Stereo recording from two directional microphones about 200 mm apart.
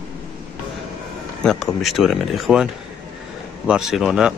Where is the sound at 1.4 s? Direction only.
5° left (ahead or behind).